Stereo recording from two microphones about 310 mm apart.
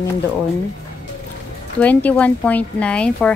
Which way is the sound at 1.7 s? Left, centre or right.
Centre.